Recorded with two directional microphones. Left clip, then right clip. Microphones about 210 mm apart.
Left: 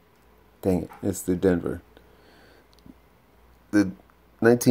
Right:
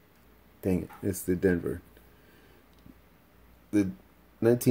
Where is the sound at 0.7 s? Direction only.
Centre (ahead or behind).